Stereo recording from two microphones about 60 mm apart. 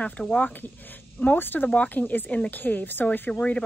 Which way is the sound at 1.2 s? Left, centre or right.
Left.